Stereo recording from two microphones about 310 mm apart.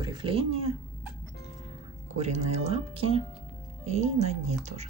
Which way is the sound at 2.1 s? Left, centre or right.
Right.